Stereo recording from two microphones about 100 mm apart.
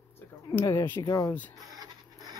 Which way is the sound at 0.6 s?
30° left (ahead or behind).